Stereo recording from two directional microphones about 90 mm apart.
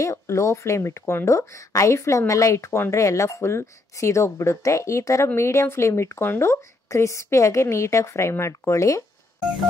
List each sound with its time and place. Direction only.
0.0 s speech: 35° left (ahead or behind)